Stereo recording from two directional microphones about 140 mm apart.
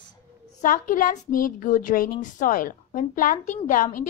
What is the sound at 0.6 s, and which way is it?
A woman's voice, 75° left (ahead or behind).